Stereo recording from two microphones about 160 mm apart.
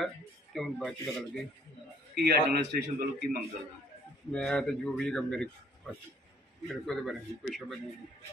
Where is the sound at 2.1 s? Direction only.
80° right.